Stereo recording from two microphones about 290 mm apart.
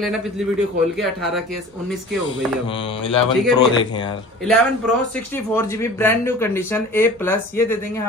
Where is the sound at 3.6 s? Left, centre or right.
Centre.